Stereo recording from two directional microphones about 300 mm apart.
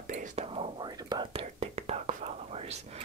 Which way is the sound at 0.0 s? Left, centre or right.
Right.